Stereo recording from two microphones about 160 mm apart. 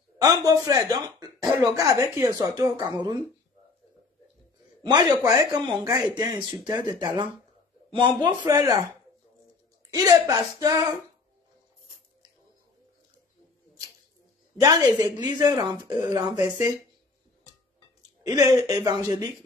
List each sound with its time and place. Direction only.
0.2 s speech: 20° right (ahead or behind)
4.8 s speech: 25° right (ahead or behind)
9.9 s speech: 25° right (ahead or behind)
14.6 s speech: 20° right (ahead or behind)
18.2 s speech: 20° right (ahead or behind)